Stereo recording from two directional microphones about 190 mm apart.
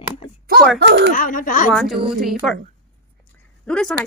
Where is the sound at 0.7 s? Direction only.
65° right (ahead or behind).